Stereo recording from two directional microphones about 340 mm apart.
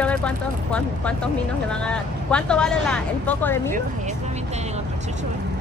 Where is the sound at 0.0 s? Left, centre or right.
Centre.